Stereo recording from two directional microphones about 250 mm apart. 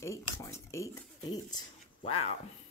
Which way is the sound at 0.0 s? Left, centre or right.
Centre.